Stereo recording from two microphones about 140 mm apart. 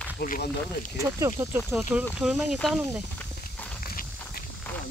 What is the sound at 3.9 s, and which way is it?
Walk, 90° left.